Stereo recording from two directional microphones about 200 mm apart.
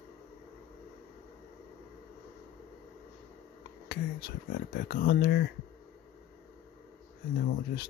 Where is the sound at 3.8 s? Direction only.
50° left (ahead or behind).